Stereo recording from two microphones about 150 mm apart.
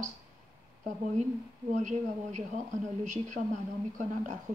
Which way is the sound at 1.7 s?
50° right (ahead or behind).